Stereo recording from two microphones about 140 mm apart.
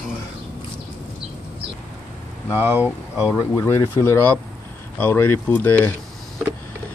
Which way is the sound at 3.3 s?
20° left (ahead or behind).